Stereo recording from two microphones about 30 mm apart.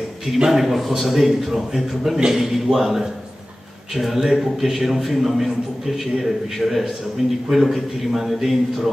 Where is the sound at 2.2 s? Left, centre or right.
Centre.